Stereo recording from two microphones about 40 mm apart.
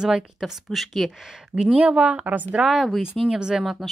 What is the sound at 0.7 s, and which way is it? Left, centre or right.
Speech, centre.